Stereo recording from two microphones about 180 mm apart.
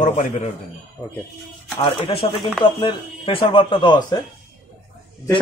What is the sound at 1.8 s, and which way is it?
Speech, 35° left (ahead or behind).